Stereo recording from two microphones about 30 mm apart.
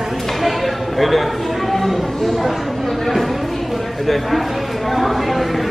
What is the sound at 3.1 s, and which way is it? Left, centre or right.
Speech, centre.